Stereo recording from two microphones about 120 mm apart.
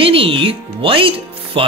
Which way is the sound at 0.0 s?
50° right (ahead or behind).